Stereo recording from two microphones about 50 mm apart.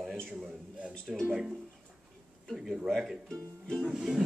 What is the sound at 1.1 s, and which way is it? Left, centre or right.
Speech, centre.